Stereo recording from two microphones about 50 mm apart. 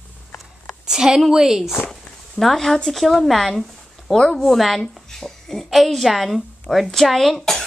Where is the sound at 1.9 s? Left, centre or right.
Centre.